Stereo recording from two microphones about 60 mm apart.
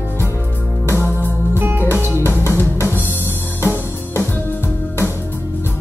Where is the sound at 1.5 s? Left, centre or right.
Right.